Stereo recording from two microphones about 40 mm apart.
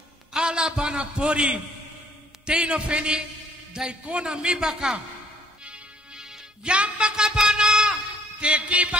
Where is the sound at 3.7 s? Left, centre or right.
Centre.